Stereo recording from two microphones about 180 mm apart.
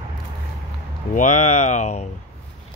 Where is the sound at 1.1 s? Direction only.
45° left (ahead or behind).